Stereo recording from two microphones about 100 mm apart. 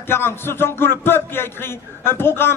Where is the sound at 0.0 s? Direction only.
25° left (ahead or behind).